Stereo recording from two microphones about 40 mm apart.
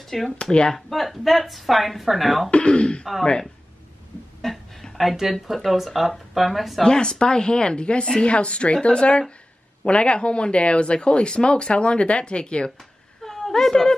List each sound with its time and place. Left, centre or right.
0.0 s speech: centre
0.4 s speech: left
0.7 s speech: centre
2.5 s speech: left
4.4 s a sound: centre
5.3 s speech: centre
6.8 s speech: centre
13.2 s a sound: centre